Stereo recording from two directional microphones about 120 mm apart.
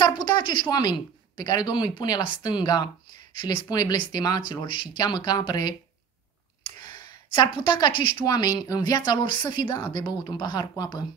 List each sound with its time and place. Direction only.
0.0 s speech: 40° left (ahead or behind)
3.6 s a woman's voice: 30° left (ahead or behind)
7.3 s a woman's voice: 40° left (ahead or behind)